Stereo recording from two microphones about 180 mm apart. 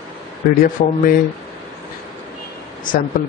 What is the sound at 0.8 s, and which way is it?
Speech, 45° left (ahead or behind).